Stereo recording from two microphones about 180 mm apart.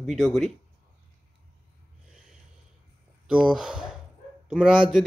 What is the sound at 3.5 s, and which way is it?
Speech, 5° right (ahead or behind).